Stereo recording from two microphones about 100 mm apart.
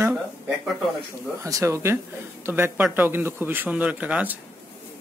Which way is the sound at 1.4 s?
30° right (ahead or behind).